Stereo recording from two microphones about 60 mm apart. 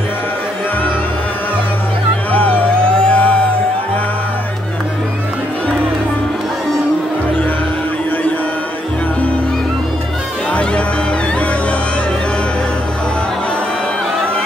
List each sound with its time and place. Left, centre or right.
3.0 s music: centre
10.5 s music: centre